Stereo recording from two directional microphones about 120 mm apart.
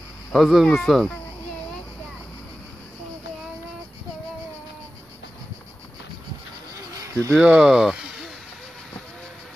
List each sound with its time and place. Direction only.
0.3 s speech: centre (ahead or behind)
6.9 s a sound: 25° right (ahead or behind)
7.3 s speech: 5° right (ahead or behind)